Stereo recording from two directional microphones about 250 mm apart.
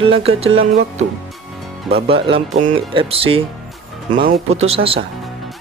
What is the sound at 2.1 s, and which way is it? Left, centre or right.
Speech, right.